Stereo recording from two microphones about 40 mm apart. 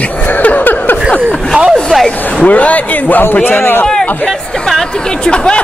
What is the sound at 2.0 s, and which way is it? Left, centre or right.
A man's voice, left.